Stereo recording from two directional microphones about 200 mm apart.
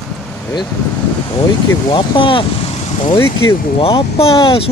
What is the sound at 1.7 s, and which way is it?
Speech, 20° left (ahead or behind).